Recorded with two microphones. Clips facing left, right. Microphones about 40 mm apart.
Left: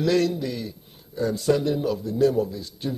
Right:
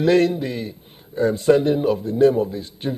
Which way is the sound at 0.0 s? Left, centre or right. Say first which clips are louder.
Right 5 dB; right.